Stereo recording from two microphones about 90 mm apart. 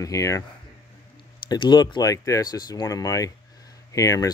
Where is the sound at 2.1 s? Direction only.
35° left (ahead or behind).